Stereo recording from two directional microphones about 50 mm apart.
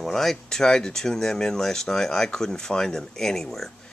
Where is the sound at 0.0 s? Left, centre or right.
Centre.